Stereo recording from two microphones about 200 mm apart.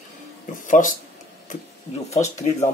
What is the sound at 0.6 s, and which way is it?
Speech, 40° left (ahead or behind).